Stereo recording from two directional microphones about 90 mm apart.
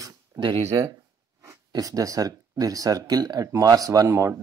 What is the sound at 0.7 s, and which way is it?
Speech, 35° right (ahead or behind).